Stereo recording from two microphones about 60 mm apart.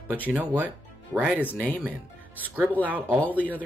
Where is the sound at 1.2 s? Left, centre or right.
Right.